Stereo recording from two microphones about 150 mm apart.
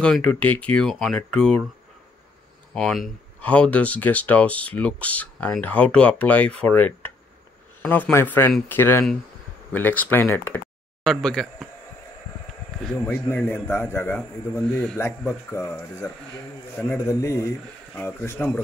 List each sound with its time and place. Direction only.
0.0 s speech: 5° left (ahead or behind)
2.7 s speech: 5° left (ahead or behind)
12.8 s speech: 10° left (ahead or behind)